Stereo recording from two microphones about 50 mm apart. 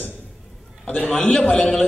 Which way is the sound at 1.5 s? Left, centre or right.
Left.